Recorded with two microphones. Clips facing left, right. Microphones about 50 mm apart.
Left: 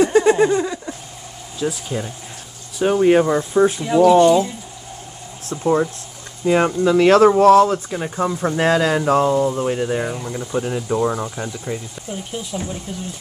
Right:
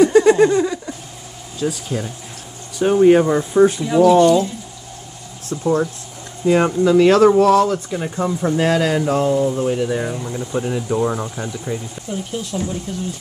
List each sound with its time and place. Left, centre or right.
0.0 s a sound: centre
1.6 s speech: centre
5.5 s speech: centre
7.3 s speech: left
7.7 s speech: centre
8.6 s speech: left
9.4 s speech: centre
10.0 s speech: centre